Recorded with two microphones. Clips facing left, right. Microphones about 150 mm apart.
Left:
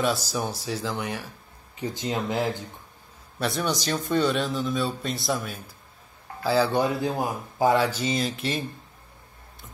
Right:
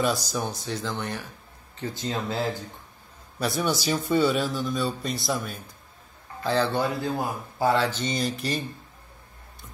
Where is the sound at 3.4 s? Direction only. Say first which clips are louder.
Right 1 dB; centre (ahead or behind).